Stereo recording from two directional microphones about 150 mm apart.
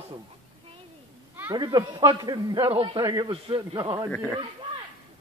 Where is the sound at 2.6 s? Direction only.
40° right (ahead or behind).